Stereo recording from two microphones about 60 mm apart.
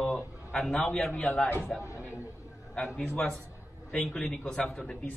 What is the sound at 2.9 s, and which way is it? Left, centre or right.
A man's voice, centre.